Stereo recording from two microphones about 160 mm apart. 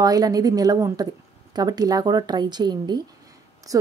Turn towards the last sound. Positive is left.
turn(degrees=-20)  # may be behind; listen again after turning